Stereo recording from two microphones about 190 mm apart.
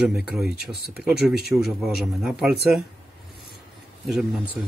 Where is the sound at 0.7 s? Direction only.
55° right (ahead or behind).